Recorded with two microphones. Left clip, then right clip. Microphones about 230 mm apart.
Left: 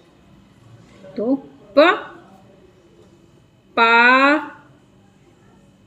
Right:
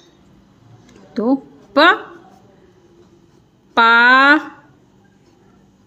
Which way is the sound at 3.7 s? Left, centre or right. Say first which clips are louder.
Right 3 dB; right.